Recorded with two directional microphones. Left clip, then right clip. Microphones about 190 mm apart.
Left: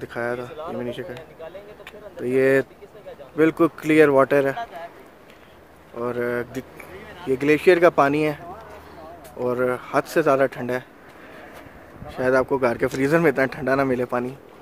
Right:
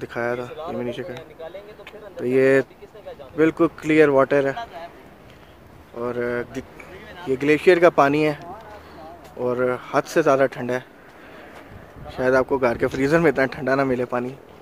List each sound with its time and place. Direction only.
0.0 s speech: 15° right (ahead or behind)
3.3 s speech: 5° left (ahead or behind)
5.9 s speech: 5° left (ahead or behind)
9.4 s speech: 5° right (ahead or behind)
12.1 s speech: 5° right (ahead or behind)